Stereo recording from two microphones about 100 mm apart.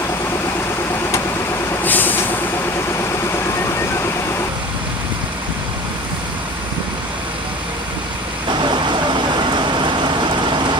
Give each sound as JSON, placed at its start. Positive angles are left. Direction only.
{"t": 1.8, "sound": "vehicle", "side_deg": 20}
{"t": 8.5, "sound": "vehicle", "side_deg": -50}